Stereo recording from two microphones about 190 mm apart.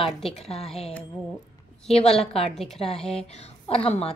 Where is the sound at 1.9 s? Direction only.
35° left (ahead or behind).